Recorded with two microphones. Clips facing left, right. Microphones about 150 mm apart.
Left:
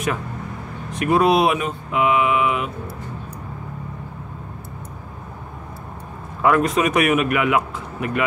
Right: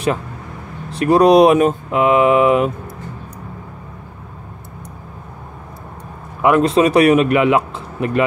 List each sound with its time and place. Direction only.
0.9 s speech: 35° right (ahead or behind)
6.4 s speech: 25° right (ahead or behind)